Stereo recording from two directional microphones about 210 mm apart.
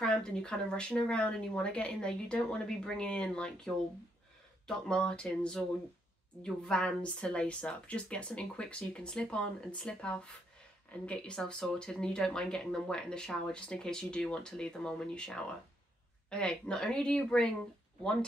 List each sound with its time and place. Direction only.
0.0 s speech: 5° left (ahead or behind)